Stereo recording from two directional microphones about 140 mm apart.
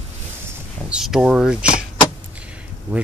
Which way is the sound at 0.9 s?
5° right (ahead or behind).